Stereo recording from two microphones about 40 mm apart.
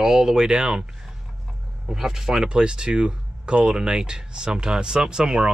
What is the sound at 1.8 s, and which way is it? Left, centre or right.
Speech, centre.